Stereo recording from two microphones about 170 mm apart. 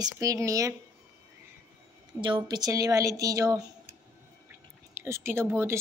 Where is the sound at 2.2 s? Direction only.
30° right (ahead or behind).